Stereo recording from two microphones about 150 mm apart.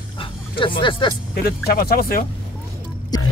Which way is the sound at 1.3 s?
85° left.